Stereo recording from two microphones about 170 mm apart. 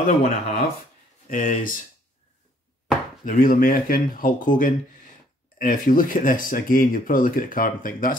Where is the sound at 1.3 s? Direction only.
50° left (ahead or behind).